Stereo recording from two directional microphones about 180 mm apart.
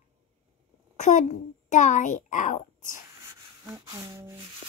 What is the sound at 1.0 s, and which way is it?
A child's voice, 40° left (ahead or behind).